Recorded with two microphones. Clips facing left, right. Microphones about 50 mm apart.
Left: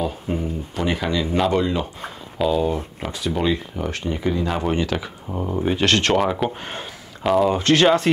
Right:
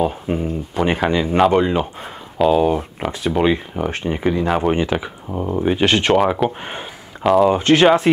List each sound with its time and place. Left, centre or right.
0.0 s speech: right
2.3 s speech: centre
3.1 s speech: right
7.2 s speech: centre
7.5 s speech: centre